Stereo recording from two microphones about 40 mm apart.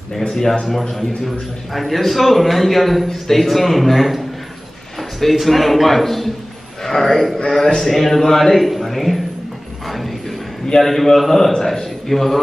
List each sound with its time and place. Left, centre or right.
0.3 s a man's voice: centre
5.3 s a man's voice: centre
9.8 s vehicle: centre
10.8 s a man's voice: centre